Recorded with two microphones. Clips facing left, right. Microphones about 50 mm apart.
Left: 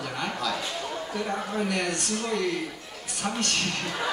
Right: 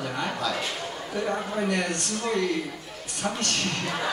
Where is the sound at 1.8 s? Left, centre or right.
Right.